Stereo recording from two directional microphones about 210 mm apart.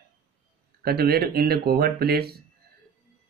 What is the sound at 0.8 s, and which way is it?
Speech, 45° right (ahead or behind).